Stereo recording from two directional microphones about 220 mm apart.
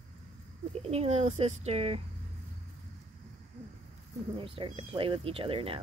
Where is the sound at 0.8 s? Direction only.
30° right (ahead or behind).